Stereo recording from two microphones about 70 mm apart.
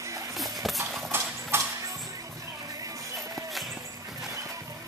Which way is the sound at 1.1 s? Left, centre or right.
Right.